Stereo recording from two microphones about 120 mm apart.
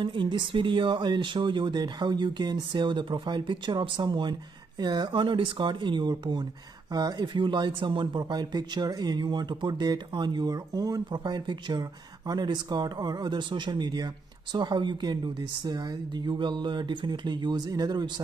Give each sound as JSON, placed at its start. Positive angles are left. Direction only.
{"t": 0.0, "sound": "speech", "side_deg": -40}